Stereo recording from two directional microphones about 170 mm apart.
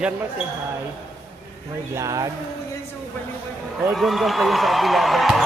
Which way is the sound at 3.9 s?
Centre (ahead or behind).